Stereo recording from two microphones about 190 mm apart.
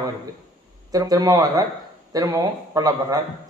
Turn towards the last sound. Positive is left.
turn(degrees=-20)  # may be behind; listen again after turning